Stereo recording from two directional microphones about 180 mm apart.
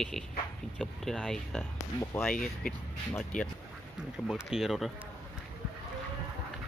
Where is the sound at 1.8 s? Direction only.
15° left (ahead or behind).